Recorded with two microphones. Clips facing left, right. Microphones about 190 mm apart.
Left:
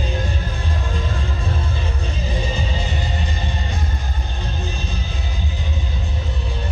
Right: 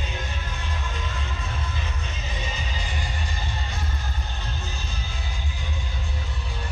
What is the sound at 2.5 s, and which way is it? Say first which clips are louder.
Music: left 8 dB; 25° left (ahead or behind).